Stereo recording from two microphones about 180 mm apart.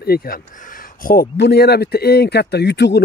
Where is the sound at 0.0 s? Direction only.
60° left (ahead or behind).